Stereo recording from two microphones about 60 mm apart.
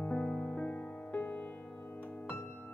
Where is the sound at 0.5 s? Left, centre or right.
Left.